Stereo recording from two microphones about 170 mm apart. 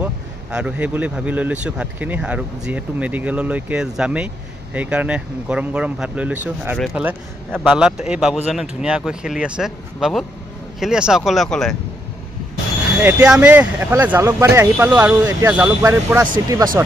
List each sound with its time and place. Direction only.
0.0 s speech: 5° right (ahead or behind)
13.0 s speech: 5° right (ahead or behind)